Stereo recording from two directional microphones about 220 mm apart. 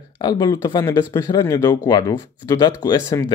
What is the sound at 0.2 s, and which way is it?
Speech, 15° left (ahead or behind).